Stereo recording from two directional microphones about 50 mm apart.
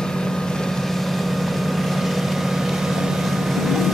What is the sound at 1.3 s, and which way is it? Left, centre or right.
Vehicle, centre.